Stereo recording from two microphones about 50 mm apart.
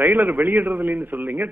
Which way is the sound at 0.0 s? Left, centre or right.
Right.